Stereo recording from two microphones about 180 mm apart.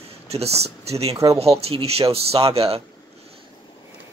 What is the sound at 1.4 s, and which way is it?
Speech, 35° right (ahead or behind).